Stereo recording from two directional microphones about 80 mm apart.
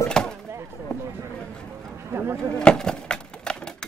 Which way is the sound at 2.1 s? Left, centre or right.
Right.